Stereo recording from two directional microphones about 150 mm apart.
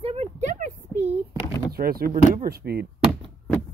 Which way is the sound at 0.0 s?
40° right (ahead or behind).